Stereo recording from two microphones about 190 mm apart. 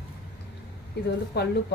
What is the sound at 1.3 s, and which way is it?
Speech, 60° left (ahead or behind).